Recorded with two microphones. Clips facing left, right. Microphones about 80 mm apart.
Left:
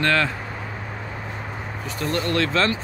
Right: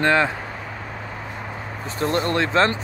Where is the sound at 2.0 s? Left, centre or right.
Right.